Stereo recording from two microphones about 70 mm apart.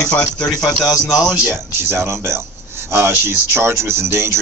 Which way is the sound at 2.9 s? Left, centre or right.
Right.